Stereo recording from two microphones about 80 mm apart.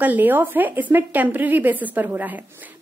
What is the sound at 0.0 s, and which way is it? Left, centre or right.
A woman's voice, right.